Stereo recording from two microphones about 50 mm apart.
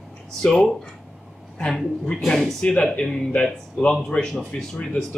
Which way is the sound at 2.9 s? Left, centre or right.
Centre.